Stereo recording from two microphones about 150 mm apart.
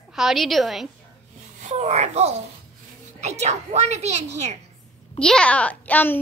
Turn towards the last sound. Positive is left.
turn(degrees=10)  # may be behind; listen again after turning